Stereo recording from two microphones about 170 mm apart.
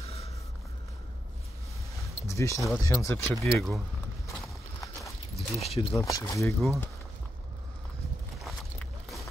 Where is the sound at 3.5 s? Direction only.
Centre (ahead or behind).